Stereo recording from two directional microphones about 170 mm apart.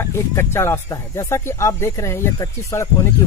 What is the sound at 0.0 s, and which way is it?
Speech, 15° left (ahead or behind).